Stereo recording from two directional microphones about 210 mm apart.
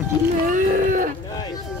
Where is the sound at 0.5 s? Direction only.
40° right (ahead or behind).